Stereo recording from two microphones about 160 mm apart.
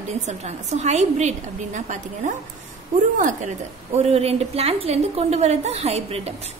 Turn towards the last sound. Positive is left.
turn(degrees=-40)  # may be behind; listen again after turning